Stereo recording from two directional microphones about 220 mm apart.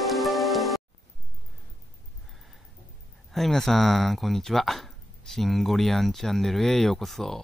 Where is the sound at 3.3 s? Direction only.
Centre (ahead or behind).